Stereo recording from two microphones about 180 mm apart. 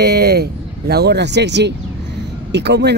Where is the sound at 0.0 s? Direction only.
65° right (ahead or behind).